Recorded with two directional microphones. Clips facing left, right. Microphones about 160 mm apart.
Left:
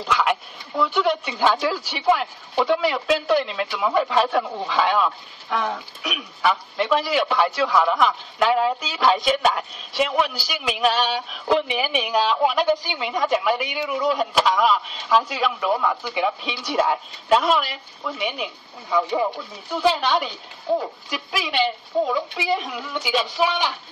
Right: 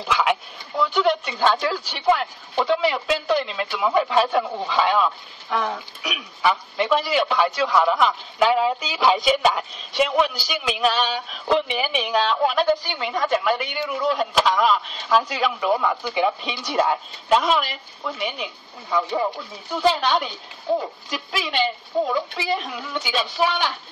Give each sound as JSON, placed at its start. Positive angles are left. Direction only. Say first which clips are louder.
{"t": 0.0, "sound": "a woman's voice", "louder": "even", "side_deg": 0}